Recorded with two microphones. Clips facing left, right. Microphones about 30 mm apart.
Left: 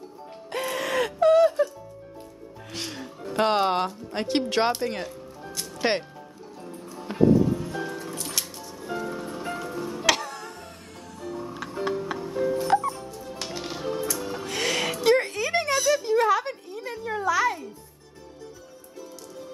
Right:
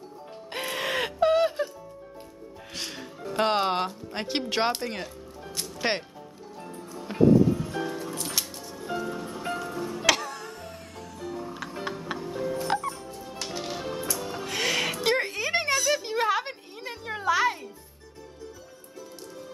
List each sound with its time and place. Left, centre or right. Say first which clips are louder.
0.5 s music: left 2 dB; centre
2.8 s speech: left 1 dB; centre
4.8 s music: left 4 dB; centre
5.8 s speech: left 3 dB; centre
7.0 s music: even; centre
15.0 s a sound: left 4 dB; centre